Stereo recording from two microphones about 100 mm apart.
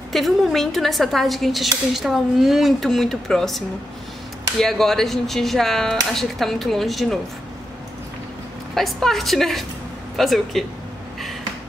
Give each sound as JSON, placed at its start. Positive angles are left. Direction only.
{"t": 0.1, "sound": "a woman's voice", "side_deg": 0}
{"t": 8.7, "sound": "a woman's voice", "side_deg": 0}